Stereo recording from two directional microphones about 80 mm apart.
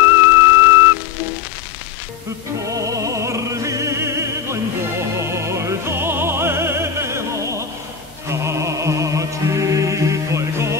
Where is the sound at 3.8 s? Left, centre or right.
Right.